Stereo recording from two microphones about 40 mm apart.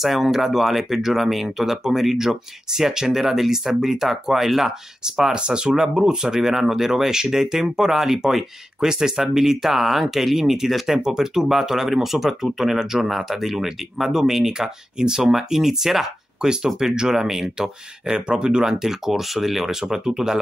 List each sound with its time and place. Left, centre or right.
0.0 s speech: centre